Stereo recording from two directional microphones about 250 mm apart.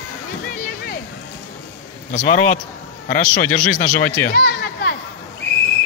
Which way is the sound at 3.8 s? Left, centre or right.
Left.